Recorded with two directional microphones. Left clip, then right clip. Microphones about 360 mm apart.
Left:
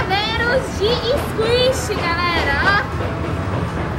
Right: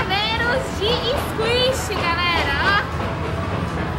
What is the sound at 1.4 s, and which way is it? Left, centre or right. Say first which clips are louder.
Speech: left 3 dB; centre.